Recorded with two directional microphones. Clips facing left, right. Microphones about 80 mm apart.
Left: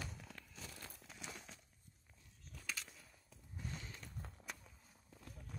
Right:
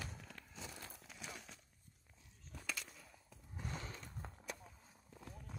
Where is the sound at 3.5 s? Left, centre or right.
Right.